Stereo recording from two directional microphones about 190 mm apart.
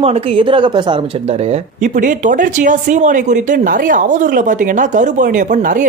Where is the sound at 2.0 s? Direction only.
40° right (ahead or behind).